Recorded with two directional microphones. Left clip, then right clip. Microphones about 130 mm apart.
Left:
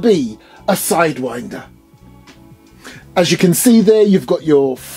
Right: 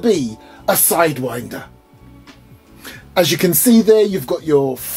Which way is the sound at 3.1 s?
45° left (ahead or behind).